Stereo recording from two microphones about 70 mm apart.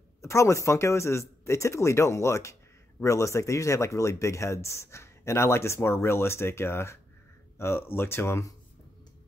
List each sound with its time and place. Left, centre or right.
0.2 s speech: left